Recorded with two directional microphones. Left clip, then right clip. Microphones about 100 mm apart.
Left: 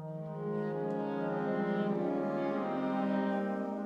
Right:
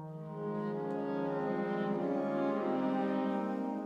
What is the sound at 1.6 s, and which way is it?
Music, 30° right (ahead or behind).